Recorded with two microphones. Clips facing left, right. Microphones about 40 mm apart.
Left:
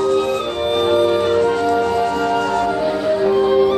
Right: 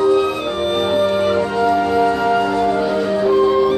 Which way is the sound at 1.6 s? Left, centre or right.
Right.